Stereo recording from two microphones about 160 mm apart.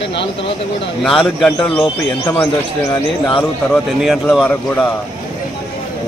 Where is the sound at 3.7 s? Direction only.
Centre (ahead or behind).